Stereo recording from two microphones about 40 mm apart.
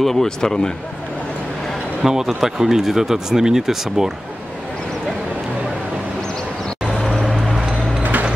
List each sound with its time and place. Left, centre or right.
0.0 s speech: centre
2.0 s speech: centre
7.1 s vehicle: centre
8.0 s a sound: right